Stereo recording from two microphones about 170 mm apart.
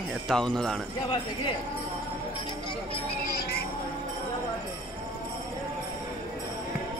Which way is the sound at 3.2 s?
65° left (ahead or behind).